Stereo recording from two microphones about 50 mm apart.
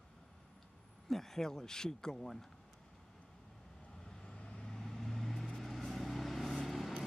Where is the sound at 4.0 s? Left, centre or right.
Centre.